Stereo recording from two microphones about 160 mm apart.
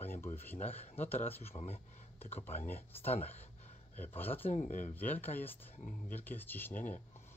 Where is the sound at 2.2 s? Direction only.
15° left (ahead or behind).